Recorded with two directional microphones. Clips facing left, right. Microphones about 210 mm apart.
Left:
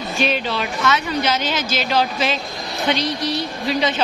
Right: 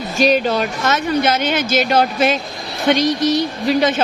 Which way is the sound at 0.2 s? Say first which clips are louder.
Right 7 dB; 45° right (ahead or behind).